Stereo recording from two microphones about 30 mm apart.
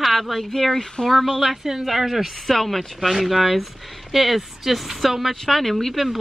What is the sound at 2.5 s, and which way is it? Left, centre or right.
Speech, centre.